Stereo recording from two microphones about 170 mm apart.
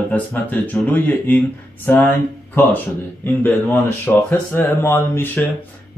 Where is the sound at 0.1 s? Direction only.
10° left (ahead or behind).